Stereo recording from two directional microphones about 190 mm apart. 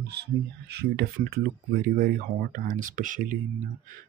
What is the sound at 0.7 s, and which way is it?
Speech, 55° right (ahead or behind).